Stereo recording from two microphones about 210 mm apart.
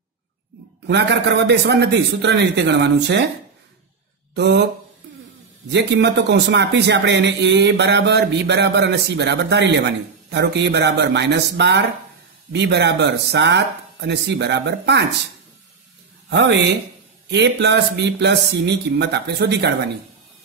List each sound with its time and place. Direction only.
0.8 s a man's voice: 55° right (ahead or behind)
4.4 s a man's voice: 55° right (ahead or behind)
5.7 s a man's voice: 55° right (ahead or behind)
16.3 s a man's voice: 55° right (ahead or behind)